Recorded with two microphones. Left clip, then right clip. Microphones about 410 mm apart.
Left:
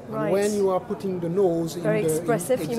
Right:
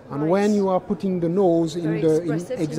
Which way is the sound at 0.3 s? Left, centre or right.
Right.